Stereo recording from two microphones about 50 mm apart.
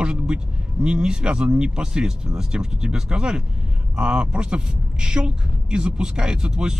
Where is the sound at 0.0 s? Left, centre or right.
Centre.